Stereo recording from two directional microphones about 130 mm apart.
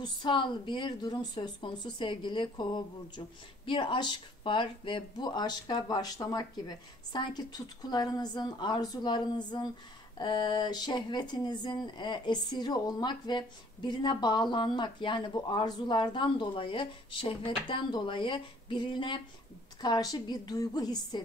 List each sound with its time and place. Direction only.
0.0 s speech: 35° left (ahead or behind)